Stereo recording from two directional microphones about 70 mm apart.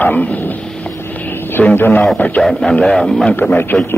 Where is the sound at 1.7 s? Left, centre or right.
Left.